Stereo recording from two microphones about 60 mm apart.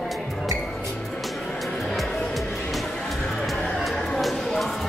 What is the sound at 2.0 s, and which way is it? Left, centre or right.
Music, centre.